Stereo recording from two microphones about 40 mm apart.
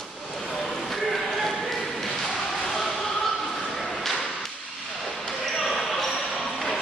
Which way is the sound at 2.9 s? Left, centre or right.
Centre.